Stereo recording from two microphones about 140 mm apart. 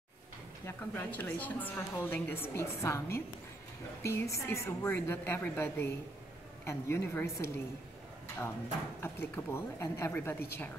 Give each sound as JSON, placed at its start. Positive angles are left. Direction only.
{"t": 0.7, "sound": "a woman's voice", "side_deg": 15}
{"t": 9.0, "sound": "a woman's voice", "side_deg": 15}